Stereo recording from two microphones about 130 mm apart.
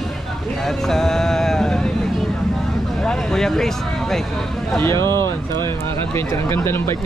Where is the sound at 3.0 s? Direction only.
5° left (ahead or behind).